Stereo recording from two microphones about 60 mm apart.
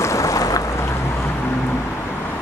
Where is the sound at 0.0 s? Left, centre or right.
Left.